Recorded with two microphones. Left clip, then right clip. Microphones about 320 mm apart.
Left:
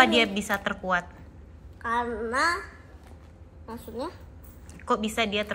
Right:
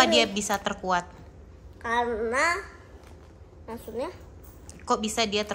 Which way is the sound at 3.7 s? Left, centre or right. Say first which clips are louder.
Right 2 dB; centre.